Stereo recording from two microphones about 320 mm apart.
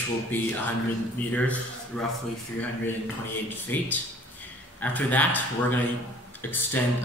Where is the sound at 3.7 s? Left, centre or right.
Centre.